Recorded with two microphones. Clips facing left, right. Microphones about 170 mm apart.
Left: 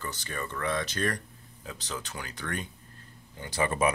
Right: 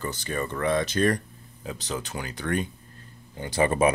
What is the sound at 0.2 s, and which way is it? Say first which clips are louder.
Speech: right 7 dB; 20° right (ahead or behind).